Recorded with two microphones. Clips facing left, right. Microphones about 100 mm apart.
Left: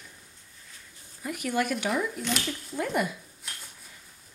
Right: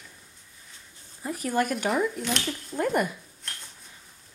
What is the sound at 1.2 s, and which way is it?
Speech, 35° right (ahead or behind).